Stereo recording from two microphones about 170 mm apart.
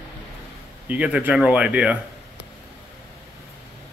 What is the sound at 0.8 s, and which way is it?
Speech, 10° right (ahead or behind).